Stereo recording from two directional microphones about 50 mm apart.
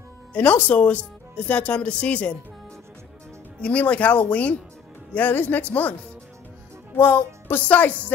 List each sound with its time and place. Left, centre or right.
0.3 s speech: left
3.6 s speech: left
7.2 s music: left
7.6 s speech: left